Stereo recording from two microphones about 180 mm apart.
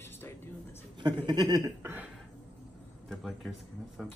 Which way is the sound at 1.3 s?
25° right (ahead or behind).